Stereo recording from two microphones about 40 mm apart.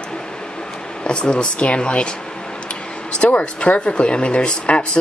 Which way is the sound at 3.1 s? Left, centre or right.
Left.